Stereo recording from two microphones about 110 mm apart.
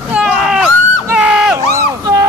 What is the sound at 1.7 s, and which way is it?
Vehicle, 30° right (ahead or behind).